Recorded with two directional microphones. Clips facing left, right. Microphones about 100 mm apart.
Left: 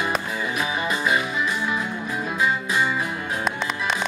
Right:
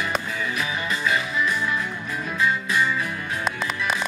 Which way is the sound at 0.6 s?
25° left (ahead or behind).